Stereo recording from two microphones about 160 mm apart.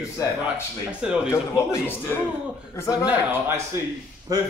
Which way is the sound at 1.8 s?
15° left (ahead or behind).